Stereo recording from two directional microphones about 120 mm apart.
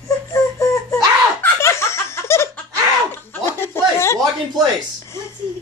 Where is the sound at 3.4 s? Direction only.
20° left (ahead or behind).